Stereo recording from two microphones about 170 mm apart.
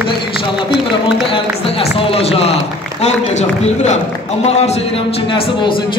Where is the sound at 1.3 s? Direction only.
30° left (ahead or behind).